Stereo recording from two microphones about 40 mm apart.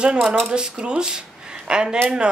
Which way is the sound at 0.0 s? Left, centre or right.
Right.